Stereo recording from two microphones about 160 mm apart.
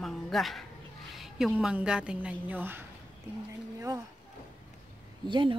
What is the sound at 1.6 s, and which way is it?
A woman's voice, 5° right (ahead or behind).